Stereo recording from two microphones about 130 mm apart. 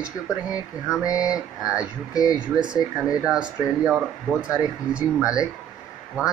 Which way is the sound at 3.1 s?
5° right (ahead or behind).